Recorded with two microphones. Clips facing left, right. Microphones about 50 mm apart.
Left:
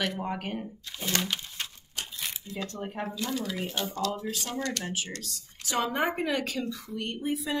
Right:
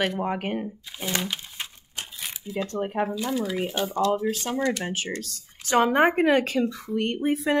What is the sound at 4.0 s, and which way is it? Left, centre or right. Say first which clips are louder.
Speech: right 10 dB; right.